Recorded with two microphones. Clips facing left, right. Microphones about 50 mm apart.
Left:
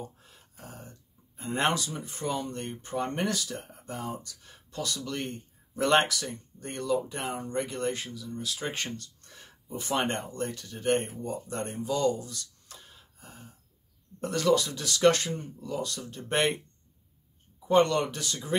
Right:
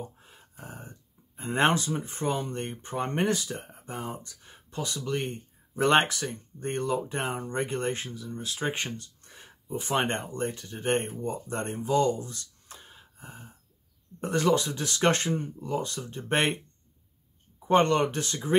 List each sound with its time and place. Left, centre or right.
0.2 s speech: right
17.6 s speech: right